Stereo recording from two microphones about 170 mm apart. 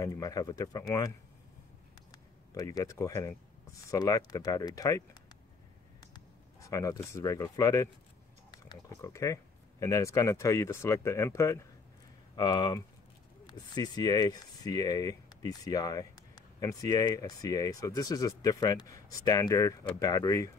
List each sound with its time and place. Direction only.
0.0 s speech: 20° left (ahead or behind)
2.5 s speech: 20° left (ahead or behind)
6.1 s a sound: 20° left (ahead or behind)
7.1 s speech: 20° left (ahead or behind)